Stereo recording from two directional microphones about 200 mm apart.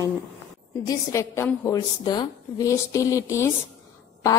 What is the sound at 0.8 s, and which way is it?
A woman's voice, 15° left (ahead or behind).